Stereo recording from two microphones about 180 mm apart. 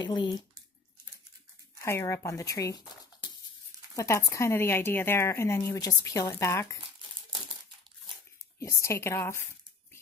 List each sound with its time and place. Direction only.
0.0 s speech: 25° left (ahead or behind)
1.8 s a woman's voice: 15° left (ahead or behind)
3.9 s a woman's voice: 15° left (ahead or behind)
8.5 s a woman's voice: 15° left (ahead or behind)